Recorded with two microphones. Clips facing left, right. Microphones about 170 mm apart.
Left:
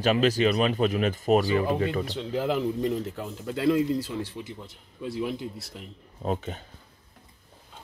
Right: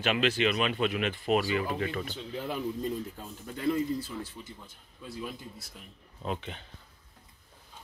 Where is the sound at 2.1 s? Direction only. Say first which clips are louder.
Left 8 dB; 85° left; by 5.8 s 70° left (ahead or behind).